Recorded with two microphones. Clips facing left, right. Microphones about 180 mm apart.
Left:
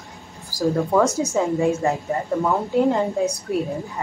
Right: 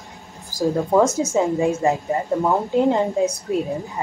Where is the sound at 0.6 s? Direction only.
20° right (ahead or behind).